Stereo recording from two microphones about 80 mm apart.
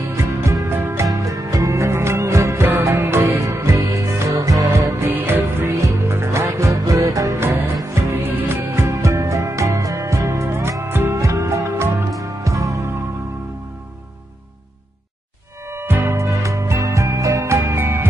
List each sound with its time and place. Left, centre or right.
0.1 s music: right
1.2 s music: right
5.1 s music: right
5.9 s music: right
7.9 s music: right
11.1 s music: right
15.7 s music: right